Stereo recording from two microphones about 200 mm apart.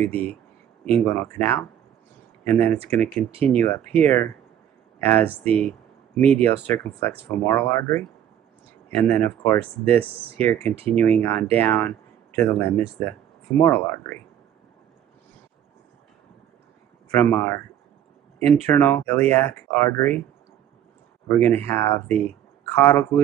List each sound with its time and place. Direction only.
0.0 s speech: 10° left (ahead or behind)
3.3 s speech: 30° right (ahead or behind)
3.5 s speech: 10° left (ahead or behind)
10.6 s speech: 30° right (ahead or behind)
10.9 s speech: 10° left (ahead or behind)
17.1 s speech: 10° left (ahead or behind)
18.7 s speech: 10° left (ahead or behind)
21.3 s speech: 10° left (ahead or behind)